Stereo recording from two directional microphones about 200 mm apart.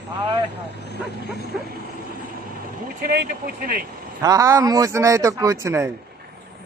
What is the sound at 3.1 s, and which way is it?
Speech, 50° right (ahead or behind).